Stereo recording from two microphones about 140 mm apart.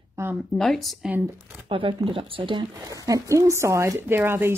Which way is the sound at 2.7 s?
25° right (ahead or behind).